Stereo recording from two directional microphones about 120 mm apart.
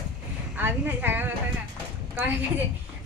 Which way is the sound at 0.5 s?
15° right (ahead or behind).